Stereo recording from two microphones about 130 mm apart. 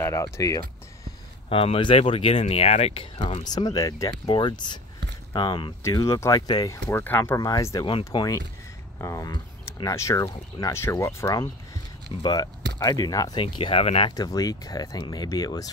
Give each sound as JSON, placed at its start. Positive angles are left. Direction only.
{"t": 0.0, "sound": "speech", "side_deg": 25}
{"t": 1.5, "sound": "speech", "side_deg": 45}
{"t": 3.4, "sound": "speech", "side_deg": 30}
{"t": 5.8, "sound": "speech", "side_deg": 20}
{"t": 6.9, "sound": "speech", "side_deg": 15}
{"t": 7.3, "sound": "speech", "side_deg": 30}
{"t": 13.4, "sound": "speech", "side_deg": 45}
{"t": 14.1, "sound": "speech", "side_deg": 30}